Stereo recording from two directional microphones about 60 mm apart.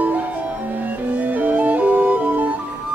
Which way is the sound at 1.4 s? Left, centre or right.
Right.